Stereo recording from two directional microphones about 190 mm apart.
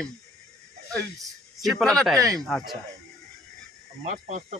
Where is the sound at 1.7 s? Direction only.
Centre (ahead or behind).